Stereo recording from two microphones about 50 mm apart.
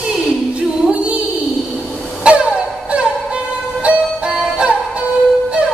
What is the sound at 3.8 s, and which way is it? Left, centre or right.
Music, right.